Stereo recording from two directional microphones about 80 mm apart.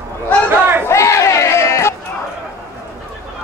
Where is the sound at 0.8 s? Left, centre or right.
Left.